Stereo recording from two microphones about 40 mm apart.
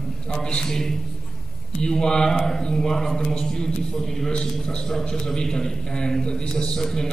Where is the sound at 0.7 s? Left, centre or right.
Centre.